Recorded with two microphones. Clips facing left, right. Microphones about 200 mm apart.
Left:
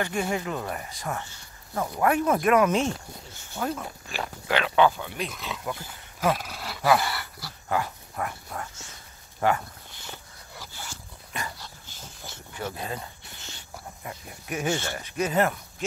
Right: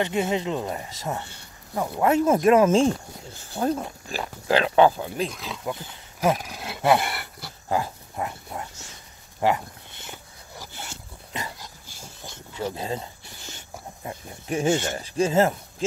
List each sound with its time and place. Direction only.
0.0 s speech: 20° right (ahead or behind)
5.3 s speech: centre (ahead or behind)
5.7 s speech: 20° right (ahead or behind)
10.6 s dog: 25° right (ahead or behind)
12.0 s a sound: 15° right (ahead or behind)
14.0 s speech: 30° right (ahead or behind)